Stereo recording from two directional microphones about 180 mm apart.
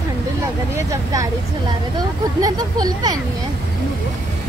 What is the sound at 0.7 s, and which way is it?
Speech, 15° right (ahead or behind).